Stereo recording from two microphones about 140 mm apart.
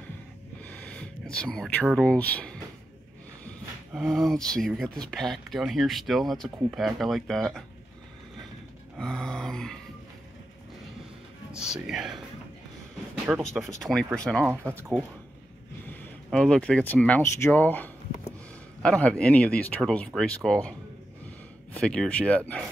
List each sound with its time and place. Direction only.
0.6 s snort: 10° left (ahead or behind)
1.3 s speech: 5° left (ahead or behind)
3.9 s speech: centre (ahead or behind)
8.9 s speech: 5° left (ahead or behind)
11.6 s speech: 5° right (ahead or behind)
13.4 s speech: 5° left (ahead or behind)
14.5 s speech: 15° right (ahead or behind)
16.3 s speech: 5° left (ahead or behind)
21.7 s speech: 5° left (ahead or behind)